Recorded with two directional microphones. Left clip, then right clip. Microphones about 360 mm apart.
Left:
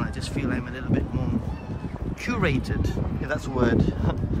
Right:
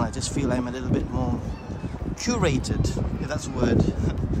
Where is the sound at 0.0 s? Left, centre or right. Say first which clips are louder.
Right 3 dB; centre.